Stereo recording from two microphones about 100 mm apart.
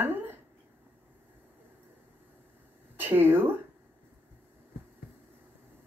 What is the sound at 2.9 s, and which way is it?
Speech, 20° right (ahead or behind).